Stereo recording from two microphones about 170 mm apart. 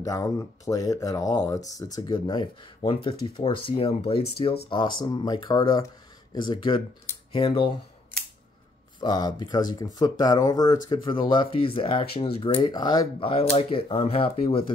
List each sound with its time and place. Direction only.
0.0 s speech: 20° left (ahead or behind)
9.0 s speech: 25° left (ahead or behind)